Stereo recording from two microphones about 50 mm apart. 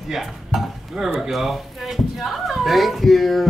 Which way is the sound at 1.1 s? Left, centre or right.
Centre.